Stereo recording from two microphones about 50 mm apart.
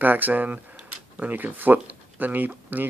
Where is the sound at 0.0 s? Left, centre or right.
Right.